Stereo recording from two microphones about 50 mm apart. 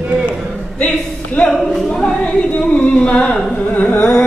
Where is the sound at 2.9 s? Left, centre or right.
Centre.